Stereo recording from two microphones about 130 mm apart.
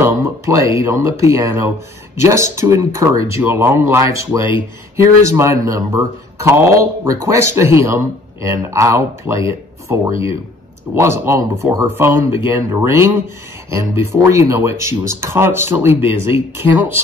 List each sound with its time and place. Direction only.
0.0 s speech: 20° right (ahead or behind)